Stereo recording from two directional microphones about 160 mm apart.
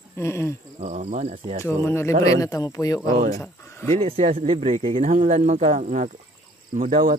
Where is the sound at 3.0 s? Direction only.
60° right (ahead or behind).